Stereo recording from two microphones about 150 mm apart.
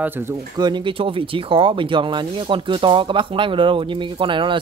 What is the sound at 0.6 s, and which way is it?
Speech, 30° right (ahead or behind).